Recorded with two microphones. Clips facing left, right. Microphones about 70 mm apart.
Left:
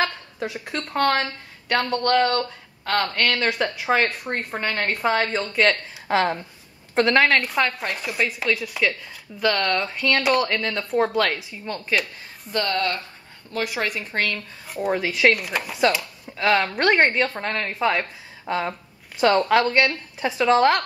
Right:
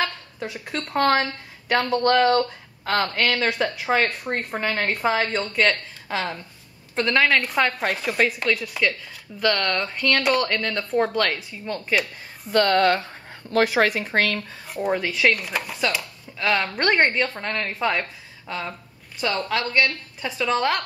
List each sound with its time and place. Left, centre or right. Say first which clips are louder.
0.0 s a woman's voice: left 2 dB; centre
6.1 s a woman's voice: left 6 dB; left
7.2 s a woman's voice: right 2 dB; centre
12.5 s speech: right 6 dB; right
13.5 s speech: right 7 dB; right
14.3 s a woman's voice: right 2 dB; centre
19.2 s a woman's voice: left 7 dB; left
20.2 s a woman's voice: left 6 dB; centre